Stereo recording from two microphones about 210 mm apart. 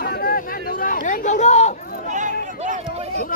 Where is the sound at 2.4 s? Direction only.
35° right (ahead or behind).